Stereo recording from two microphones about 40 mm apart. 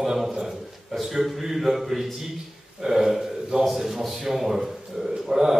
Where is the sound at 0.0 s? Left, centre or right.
Centre.